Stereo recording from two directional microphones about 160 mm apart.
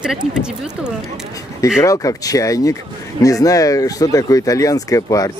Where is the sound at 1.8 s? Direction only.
20° left (ahead or behind).